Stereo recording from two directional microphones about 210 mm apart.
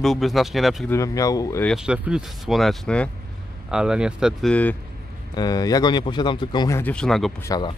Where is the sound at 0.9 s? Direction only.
15° left (ahead or behind).